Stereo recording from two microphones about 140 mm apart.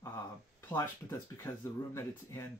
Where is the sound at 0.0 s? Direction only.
20° left (ahead or behind).